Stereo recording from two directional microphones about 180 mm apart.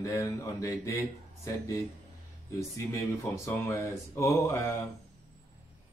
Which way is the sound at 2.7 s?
15° left (ahead or behind).